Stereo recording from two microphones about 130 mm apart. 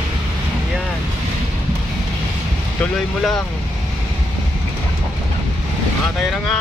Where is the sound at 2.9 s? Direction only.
5° left (ahead or behind).